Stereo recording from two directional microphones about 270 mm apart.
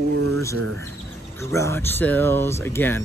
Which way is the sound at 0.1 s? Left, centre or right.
Right.